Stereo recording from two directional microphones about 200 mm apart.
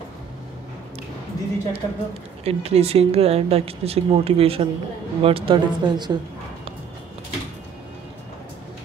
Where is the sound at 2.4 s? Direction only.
30° right (ahead or behind).